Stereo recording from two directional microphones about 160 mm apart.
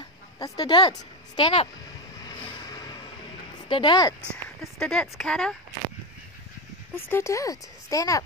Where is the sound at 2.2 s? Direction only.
30° left (ahead or behind).